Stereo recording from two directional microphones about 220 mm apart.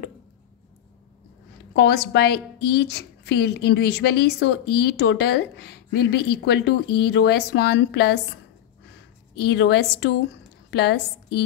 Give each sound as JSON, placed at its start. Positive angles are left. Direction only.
{"t": 1.7, "sound": "a woman's voice", "side_deg": 50}
{"t": 9.3, "sound": "a woman's voice", "side_deg": 50}